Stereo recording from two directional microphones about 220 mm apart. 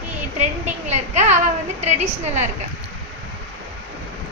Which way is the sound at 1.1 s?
30° right (ahead or behind).